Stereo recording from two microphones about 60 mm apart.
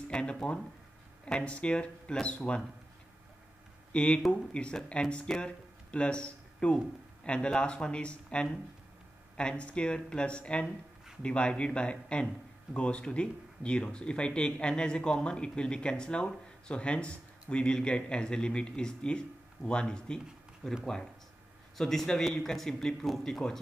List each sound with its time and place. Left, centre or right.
0.1 s speech: centre
3.9 s speech: centre